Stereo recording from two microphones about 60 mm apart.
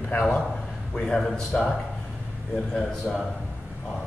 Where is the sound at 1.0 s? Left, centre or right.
Centre.